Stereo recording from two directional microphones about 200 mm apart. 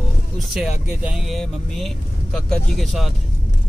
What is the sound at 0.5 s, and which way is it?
Speech, 5° right (ahead or behind).